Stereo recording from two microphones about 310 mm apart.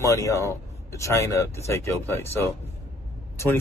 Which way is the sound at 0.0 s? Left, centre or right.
Centre.